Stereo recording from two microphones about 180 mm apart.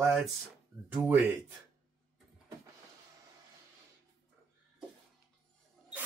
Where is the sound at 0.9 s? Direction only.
10° right (ahead or behind).